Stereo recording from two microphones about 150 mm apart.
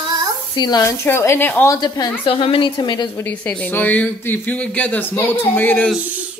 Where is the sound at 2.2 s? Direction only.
40° left (ahead or behind).